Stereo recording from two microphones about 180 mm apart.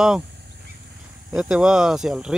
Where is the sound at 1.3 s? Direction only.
5° right (ahead or behind).